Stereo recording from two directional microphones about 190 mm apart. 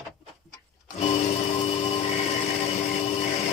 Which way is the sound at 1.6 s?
35° left (ahead or behind).